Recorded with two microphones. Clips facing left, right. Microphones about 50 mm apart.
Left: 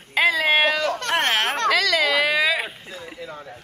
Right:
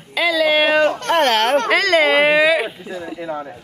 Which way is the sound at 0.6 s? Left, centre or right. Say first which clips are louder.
Right 6 dB; right.